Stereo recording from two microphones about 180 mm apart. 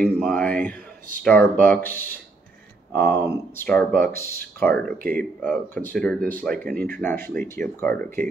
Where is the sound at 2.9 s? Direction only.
10° left (ahead or behind).